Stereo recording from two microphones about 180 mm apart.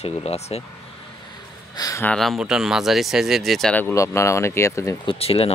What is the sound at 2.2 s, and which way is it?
Speech, centre (ahead or behind).